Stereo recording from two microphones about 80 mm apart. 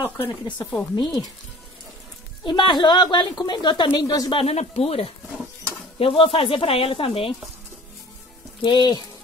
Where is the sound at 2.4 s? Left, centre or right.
Left.